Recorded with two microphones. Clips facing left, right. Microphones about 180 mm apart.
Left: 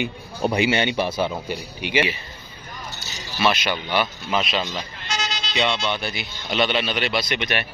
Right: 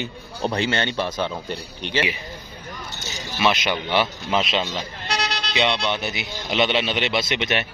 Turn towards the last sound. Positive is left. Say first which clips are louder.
# right 1 dB
turn(degrees=-20)  # may be behind; listen again after turning